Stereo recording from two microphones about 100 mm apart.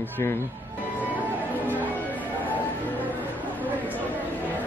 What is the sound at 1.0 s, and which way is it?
Music, 15° right (ahead or behind).